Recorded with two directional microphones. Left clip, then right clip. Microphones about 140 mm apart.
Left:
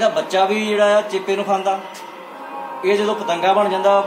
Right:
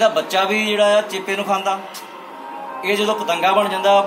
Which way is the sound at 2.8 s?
Centre (ahead or behind).